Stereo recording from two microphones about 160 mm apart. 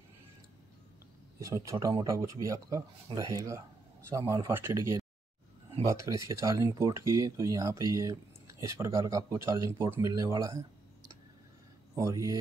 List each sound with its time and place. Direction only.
1.4 s speech: 20° right (ahead or behind)